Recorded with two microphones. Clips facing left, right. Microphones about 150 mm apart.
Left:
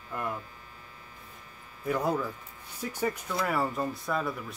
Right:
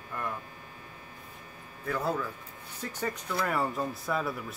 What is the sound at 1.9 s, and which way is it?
Speech, 15° left (ahead or behind).